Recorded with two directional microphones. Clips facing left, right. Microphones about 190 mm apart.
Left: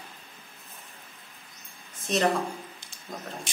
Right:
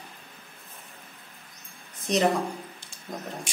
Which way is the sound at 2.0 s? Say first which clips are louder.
Right 2 dB; 15° right (ahead or behind).